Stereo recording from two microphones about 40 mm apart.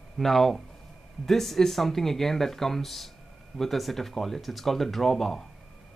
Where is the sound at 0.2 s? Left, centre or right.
Centre.